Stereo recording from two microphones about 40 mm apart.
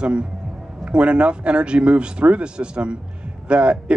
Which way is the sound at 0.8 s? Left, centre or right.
Right.